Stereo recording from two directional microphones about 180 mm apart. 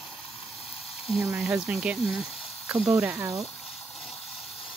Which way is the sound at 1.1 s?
Centre (ahead or behind).